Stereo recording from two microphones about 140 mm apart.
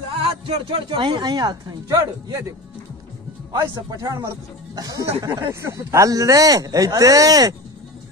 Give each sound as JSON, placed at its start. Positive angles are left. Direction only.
{"t": 0.2, "sound": "speech", "side_deg": -40}
{"t": 3.7, "sound": "speech", "side_deg": -25}